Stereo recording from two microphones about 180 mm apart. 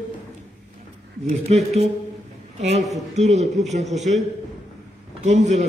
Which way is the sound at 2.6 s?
40° right (ahead or behind).